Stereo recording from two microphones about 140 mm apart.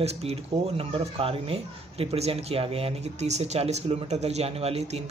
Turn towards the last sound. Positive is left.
turn(degrees=-45)  # may be behind; listen again after turning